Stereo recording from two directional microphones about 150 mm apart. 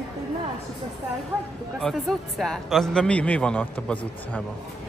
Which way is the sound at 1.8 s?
Centre (ahead or behind).